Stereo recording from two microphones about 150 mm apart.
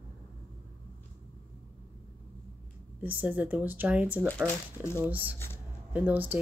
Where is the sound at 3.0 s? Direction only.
10° right (ahead or behind).